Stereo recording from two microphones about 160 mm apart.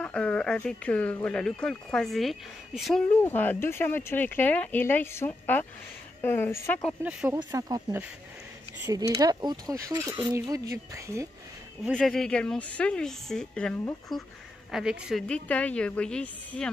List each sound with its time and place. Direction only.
0.0 s speech: 5° left (ahead or behind)
7.0 s speech: 10° right (ahead or behind)
7.3 s speech: 25° right (ahead or behind)
12.0 s a woman's voice: 5° left (ahead or behind)
15.2 s speech: 10° left (ahead or behind)